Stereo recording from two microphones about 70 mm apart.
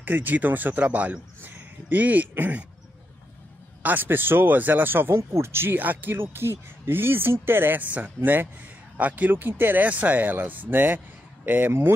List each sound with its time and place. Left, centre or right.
0.0 s speech: right
3.8 s speech: right